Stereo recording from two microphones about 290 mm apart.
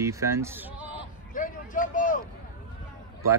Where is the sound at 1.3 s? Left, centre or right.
Left.